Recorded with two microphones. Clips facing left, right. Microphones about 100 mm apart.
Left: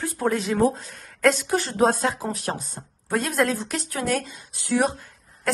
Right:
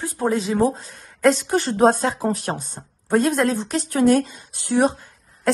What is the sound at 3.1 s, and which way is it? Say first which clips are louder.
Speech: right 5 dB; 40° right (ahead or behind).